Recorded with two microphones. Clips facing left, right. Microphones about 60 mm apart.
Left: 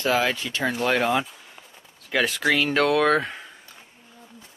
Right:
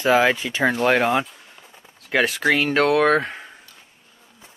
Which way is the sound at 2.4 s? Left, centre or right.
Centre.